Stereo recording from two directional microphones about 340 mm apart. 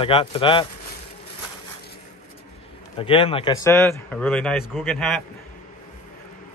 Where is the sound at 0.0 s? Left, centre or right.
Centre.